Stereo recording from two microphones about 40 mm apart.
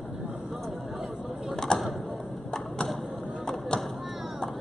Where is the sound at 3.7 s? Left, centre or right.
Left.